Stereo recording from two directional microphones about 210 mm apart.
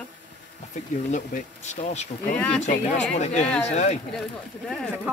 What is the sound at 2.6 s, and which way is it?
Speech, 35° left (ahead or behind).